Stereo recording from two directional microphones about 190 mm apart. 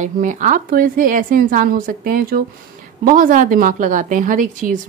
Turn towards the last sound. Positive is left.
turn(degrees=-45)  # may be behind; listen again after turning